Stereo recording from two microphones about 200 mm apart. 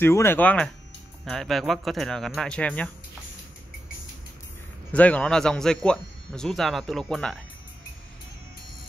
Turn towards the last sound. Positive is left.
turn(degrees=0)  # may be behind; listen again after turning